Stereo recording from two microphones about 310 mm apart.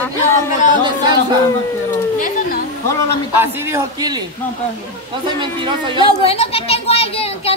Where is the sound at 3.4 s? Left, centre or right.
Centre.